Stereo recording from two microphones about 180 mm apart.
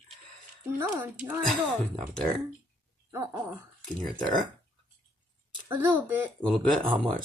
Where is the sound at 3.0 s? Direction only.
15° right (ahead or behind).